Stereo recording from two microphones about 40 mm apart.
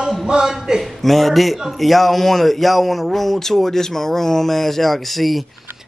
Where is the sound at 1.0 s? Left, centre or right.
Centre.